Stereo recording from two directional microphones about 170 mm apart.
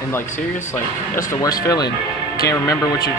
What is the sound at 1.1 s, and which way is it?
Speech, 20° left (ahead or behind).